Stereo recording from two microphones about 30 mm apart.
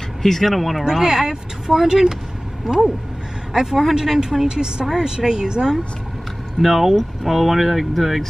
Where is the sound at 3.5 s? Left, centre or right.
Centre.